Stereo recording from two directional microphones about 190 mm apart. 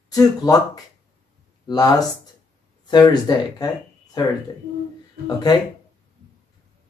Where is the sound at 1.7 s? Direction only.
20° left (ahead or behind).